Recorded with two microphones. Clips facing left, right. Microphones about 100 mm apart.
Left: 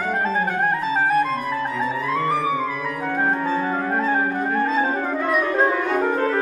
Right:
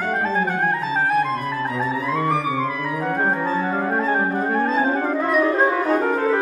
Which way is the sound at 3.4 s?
Centre (ahead or behind).